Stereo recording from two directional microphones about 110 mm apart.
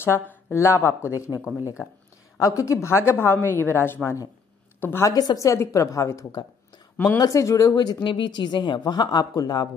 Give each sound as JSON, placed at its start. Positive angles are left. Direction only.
{"t": 0.0, "sound": "a woman's voice", "side_deg": 20}